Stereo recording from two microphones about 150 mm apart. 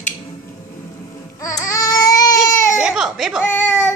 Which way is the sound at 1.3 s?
20° left (ahead or behind).